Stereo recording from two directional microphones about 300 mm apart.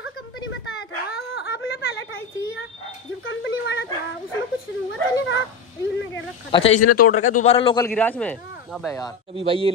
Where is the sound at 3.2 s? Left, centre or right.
Left.